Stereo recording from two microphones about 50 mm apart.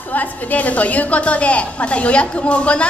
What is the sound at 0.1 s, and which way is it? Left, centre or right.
A woman's voice, left.